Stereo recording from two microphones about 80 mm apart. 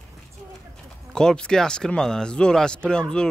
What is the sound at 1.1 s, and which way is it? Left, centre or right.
Speech, centre.